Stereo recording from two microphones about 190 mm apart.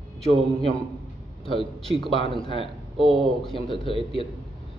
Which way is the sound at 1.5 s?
25° left (ahead or behind).